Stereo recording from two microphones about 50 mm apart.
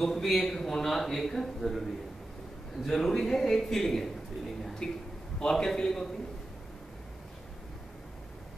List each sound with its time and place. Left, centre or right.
0.0 s a man's voice: centre